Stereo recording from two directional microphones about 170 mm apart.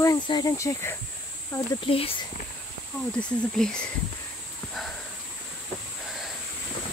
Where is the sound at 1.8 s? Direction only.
35° left (ahead or behind).